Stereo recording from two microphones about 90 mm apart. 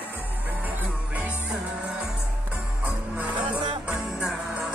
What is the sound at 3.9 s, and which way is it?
Music, 10° right (ahead or behind).